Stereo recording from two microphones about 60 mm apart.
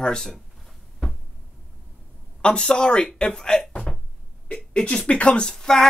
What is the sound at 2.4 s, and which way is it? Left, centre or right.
Speech, centre.